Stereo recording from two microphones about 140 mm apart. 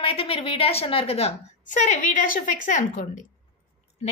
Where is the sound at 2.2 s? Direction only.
80° left.